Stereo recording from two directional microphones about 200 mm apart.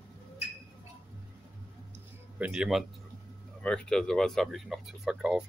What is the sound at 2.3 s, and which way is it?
Speech, 5° right (ahead or behind).